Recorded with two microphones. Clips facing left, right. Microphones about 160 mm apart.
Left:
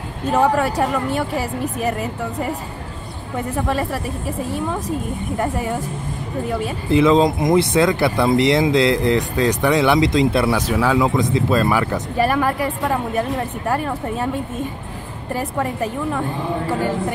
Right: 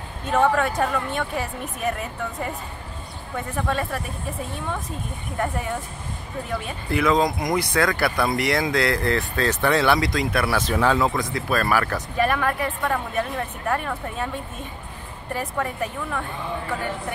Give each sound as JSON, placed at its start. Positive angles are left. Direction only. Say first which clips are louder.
{"t": 0.3, "sound": "speech", "louder": "left 3 dB", "side_deg": 10}
{"t": 6.9, "sound": "speech", "louder": "left 6 dB", "side_deg": 25}
{"t": 10.7, "sound": "speech", "louder": "even", "side_deg": 10}
{"t": 11.3, "sound": "speech", "louder": "left 5 dB", "side_deg": 20}
{"t": 12.2, "sound": "speech", "louder": "left 4 dB", "side_deg": 35}
{"t": 15.5, "sound": "speech", "louder": "left 5 dB", "side_deg": 25}